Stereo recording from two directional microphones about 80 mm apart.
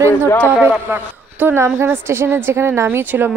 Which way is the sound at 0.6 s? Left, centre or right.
Right.